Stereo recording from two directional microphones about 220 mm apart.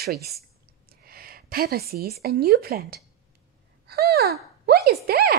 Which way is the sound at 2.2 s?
45° right (ahead or behind).